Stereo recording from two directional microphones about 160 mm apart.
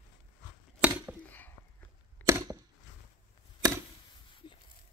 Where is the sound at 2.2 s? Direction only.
20° right (ahead or behind).